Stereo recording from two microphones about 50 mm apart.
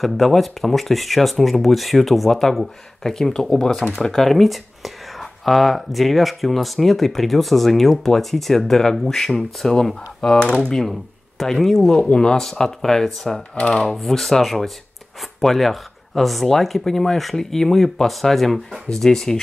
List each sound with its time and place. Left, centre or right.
0.0 s speech: centre
11.9 s speech: centre
12.4 s speech: centre
13.9 s speech: centre